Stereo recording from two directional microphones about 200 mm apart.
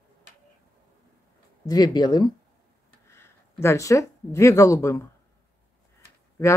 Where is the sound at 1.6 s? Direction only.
20° left (ahead or behind).